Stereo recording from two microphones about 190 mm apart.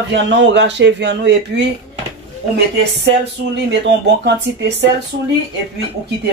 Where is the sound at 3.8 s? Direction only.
60° right (ahead or behind).